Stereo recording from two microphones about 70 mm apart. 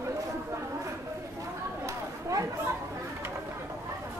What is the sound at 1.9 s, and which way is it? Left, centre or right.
Chatter, right.